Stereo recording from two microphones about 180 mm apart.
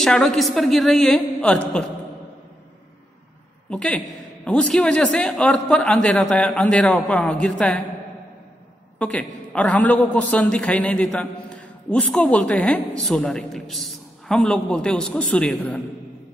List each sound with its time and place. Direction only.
0.0 s a man's voice: 5° left (ahead or behind)
3.7 s a man's voice: 5° left (ahead or behind)
8.9 s a man's voice: 5° left (ahead or behind)